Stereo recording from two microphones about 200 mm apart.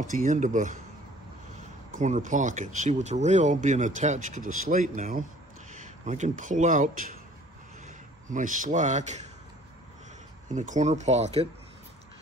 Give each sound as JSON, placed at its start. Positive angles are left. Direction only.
{"t": 0.0, "sound": "speech", "side_deg": -40}
{"t": 2.0, "sound": "speech", "side_deg": -40}
{"t": 8.3, "sound": "speech", "side_deg": -40}
{"t": 10.5, "sound": "speech", "side_deg": -40}